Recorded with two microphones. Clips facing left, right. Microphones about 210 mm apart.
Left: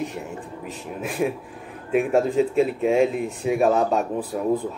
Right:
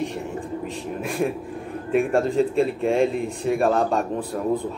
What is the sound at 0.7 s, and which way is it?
A man's voice, 5° left (ahead or behind).